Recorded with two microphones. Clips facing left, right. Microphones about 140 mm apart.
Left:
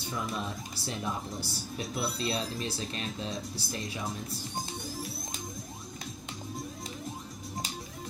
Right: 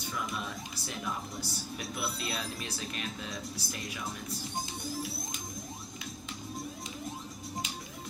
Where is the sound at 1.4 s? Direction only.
30° left (ahead or behind).